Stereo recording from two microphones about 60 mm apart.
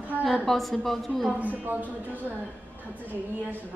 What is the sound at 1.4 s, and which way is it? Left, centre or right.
Speech, right.